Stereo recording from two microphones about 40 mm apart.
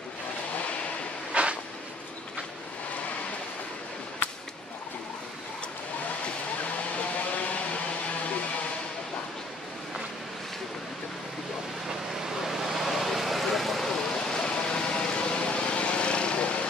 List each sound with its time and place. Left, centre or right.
1.3 s vehicle: right
4.2 s a sound: left
12.4 s vehicle: centre; by 16.6 s left